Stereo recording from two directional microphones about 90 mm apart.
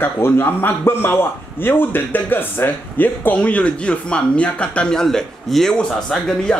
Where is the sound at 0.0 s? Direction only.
25° left (ahead or behind); by 6.6 s 5° left (ahead or behind).